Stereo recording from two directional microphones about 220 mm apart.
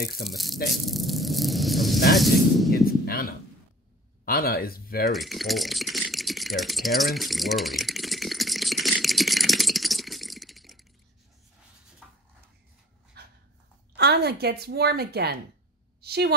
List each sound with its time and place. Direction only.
0.2 s speech: centre (ahead or behind)
0.8 s a sound: centre (ahead or behind)
2.1 s speech: centre (ahead or behind)
2.7 s a sound: 40° left (ahead or behind)
4.2 s speech: 40° left (ahead or behind)
5.1 s rattle: centre (ahead or behind)
12.0 s a sound: centre (ahead or behind)
13.2 s dog: 45° right (ahead or behind)
13.9 s a woman's voice: 45° right (ahead or behind)